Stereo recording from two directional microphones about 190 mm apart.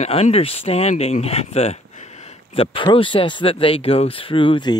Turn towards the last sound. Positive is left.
turn(degrees=25)  # may be behind; listen again after turning